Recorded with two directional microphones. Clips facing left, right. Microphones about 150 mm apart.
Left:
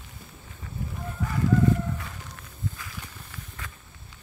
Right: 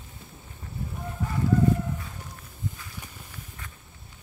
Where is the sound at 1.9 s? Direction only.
85° left.